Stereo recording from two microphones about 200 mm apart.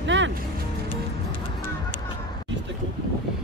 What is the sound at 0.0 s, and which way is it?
Music, 65° right (ahead or behind).